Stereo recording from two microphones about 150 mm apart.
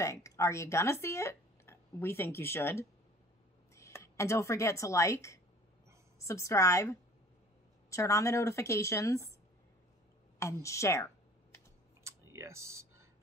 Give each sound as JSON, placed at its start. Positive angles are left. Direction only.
{"t": 0.0, "sound": "a woman's voice", "side_deg": 20}
{"t": 10.4, "sound": "a woman's voice", "side_deg": 20}
{"t": 12.0, "sound": "typing", "side_deg": -20}